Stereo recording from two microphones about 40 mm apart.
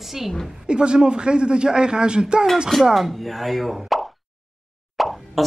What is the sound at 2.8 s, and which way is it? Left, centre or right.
Speech, centre.